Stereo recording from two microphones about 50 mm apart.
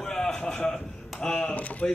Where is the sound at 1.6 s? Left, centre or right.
Left.